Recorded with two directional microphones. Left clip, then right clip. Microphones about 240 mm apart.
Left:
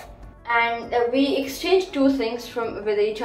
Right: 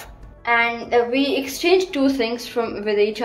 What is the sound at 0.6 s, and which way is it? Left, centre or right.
A woman's voice, right.